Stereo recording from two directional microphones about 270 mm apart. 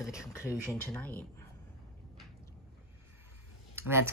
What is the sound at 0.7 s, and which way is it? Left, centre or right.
Speech, centre.